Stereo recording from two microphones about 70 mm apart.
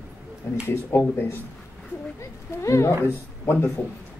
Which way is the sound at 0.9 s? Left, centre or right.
Left.